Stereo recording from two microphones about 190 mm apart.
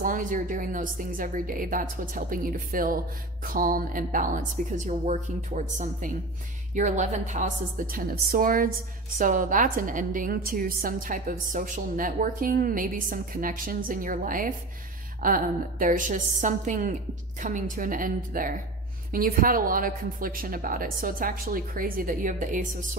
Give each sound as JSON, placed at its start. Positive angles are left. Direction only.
{"t": 0.0, "sound": "a woman's voice", "side_deg": -45}